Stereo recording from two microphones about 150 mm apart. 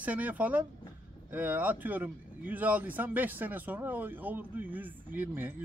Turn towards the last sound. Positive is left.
turn(degrees=-15)  # may be behind; listen again after turning